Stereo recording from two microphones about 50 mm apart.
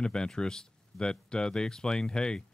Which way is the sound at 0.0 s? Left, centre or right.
Centre.